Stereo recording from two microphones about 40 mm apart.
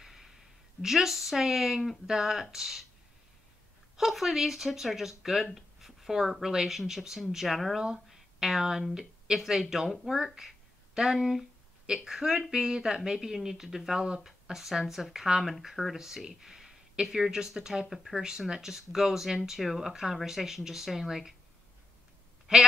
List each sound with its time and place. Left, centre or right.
0.0 s a sound: centre
0.8 s speech: centre
3.9 s speech: centre
18.2 s speech: centre